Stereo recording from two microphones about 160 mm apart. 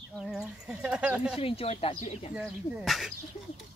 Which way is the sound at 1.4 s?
35° left (ahead or behind).